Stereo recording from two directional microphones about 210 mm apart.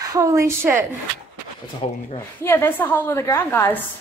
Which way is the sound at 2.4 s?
10° left (ahead or behind).